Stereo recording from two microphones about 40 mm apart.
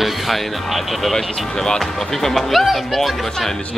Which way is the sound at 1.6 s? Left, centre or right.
Centre.